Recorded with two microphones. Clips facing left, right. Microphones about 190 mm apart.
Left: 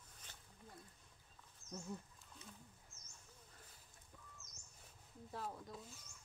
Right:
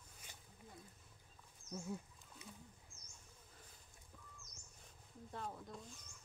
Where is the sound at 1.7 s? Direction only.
10° right (ahead or behind).